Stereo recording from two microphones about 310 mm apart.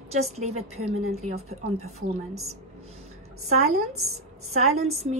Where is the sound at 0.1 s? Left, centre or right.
Right.